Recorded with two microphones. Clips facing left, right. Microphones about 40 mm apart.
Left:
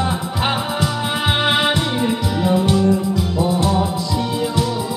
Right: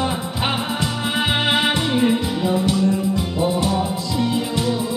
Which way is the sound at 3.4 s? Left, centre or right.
Centre.